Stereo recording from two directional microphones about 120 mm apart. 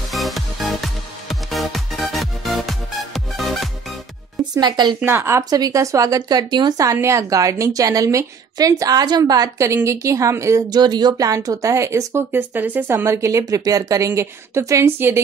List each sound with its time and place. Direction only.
0.1 s music: centre (ahead or behind)
4.4 s a woman's voice: 35° right (ahead or behind)
5.0 s a woman's voice: 20° right (ahead or behind)